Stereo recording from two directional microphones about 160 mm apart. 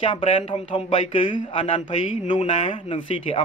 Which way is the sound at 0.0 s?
35° left (ahead or behind).